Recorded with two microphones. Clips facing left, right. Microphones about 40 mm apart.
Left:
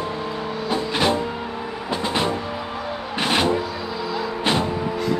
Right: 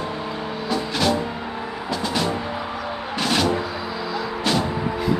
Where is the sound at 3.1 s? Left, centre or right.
Left.